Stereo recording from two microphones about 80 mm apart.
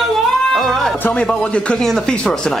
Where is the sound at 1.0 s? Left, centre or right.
Centre.